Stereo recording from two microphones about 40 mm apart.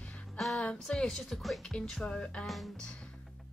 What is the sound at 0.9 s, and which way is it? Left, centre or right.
Speech, left.